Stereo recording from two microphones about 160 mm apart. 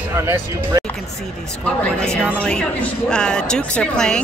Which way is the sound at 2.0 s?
5° left (ahead or behind).